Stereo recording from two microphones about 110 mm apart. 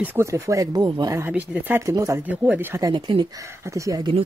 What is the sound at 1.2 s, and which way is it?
Speech, 15° right (ahead or behind).